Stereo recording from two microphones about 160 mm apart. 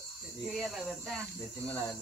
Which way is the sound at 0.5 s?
Centre (ahead or behind).